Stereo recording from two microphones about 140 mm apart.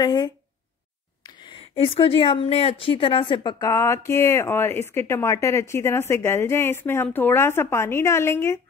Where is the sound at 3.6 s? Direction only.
20° left (ahead or behind).